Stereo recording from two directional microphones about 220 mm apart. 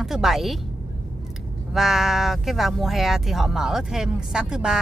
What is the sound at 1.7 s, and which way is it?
Speech, centre (ahead or behind).